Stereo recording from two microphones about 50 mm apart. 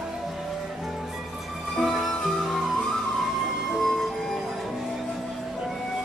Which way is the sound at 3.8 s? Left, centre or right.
Centre.